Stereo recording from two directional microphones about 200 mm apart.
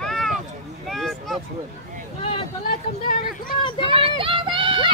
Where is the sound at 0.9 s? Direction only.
Centre (ahead or behind).